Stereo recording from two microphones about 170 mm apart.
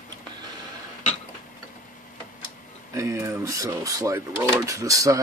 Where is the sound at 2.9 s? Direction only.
20° right (ahead or behind).